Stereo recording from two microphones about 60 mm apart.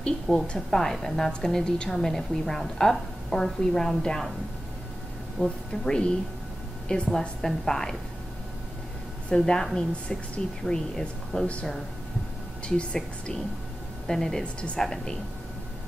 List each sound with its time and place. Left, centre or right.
0.0 s a woman's voice: centre
5.4 s a woman's voice: centre
9.3 s a woman's voice: centre
12.6 s a woman's voice: centre
14.4 s a woman's voice: centre
14.8 s a woman's voice: centre